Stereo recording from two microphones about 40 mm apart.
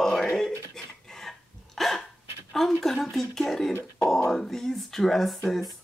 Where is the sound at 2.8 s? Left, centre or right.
Centre.